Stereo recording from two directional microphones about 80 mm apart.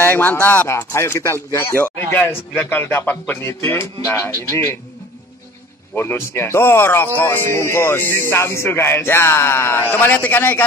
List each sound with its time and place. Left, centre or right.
0.0 s music: left
0.7 s a man's voice: left
5.9 s music: left